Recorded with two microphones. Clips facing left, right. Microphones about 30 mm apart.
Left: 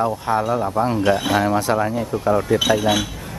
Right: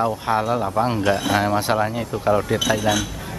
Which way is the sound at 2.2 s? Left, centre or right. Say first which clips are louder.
Left 1 dB; centre.